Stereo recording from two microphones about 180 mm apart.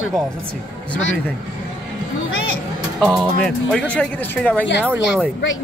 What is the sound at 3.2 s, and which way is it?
Speech, 5° left (ahead or behind).